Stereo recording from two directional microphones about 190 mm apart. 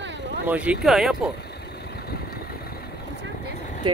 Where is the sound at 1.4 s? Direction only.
60° left (ahead or behind).